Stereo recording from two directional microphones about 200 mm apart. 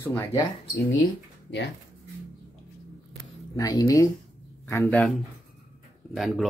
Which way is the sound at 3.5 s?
15° left (ahead or behind).